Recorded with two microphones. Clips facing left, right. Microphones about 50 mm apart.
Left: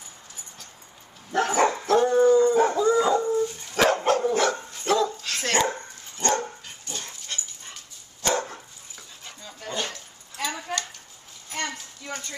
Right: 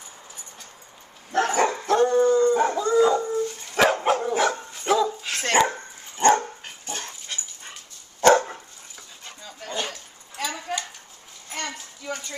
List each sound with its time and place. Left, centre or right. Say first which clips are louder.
1.3 s dog: even; centre
6.1 s dog: right 7 dB; right
7.3 s dog: left 1 dB; centre
8.2 s dog: right 9 dB; right
9.6 s dog: right 1 dB; centre
10.7 s a sound: right 2 dB; centre
11.5 s clip-clop: left 1 dB; centre